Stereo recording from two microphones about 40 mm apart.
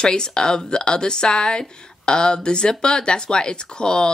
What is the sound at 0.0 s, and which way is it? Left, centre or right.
Speech, left.